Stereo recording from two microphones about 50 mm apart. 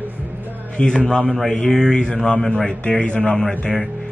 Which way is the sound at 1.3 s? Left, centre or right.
Centre.